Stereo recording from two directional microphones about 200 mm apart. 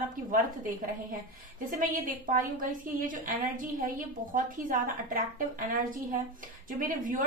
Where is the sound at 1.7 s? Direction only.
45° right (ahead or behind).